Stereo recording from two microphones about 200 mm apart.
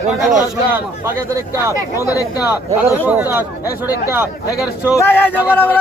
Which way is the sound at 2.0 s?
15° left (ahead or behind).